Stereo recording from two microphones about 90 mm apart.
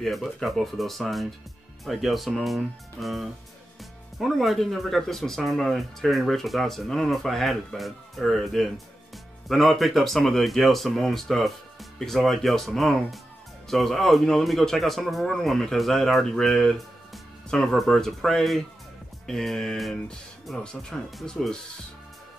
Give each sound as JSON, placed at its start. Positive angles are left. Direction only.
{"t": 0.0, "sound": "a man's voice", "side_deg": 0}